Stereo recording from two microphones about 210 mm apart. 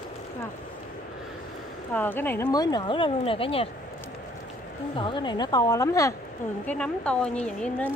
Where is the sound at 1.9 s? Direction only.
10° left (ahead or behind); by 3.7 s 25° left (ahead or behind).